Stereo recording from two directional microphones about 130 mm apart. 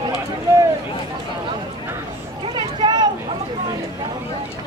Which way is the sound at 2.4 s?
35° right (ahead or behind).